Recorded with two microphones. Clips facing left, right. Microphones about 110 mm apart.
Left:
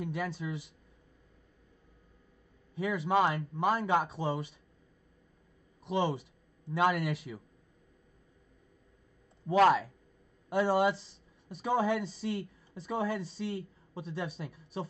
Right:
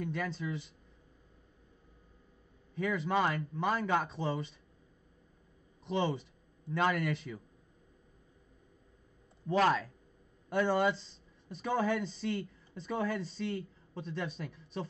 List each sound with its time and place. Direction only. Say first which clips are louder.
0.0 s speech: left 1 dB; 10° left (ahead or behind)
2.7 s speech: left 2 dB; 5° left (ahead or behind)
5.9 s speech: left 2 dB; 5° left (ahead or behind)
9.7 s speech: left 4 dB; 15° left (ahead or behind)